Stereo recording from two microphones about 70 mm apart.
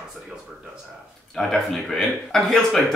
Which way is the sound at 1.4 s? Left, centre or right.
Centre.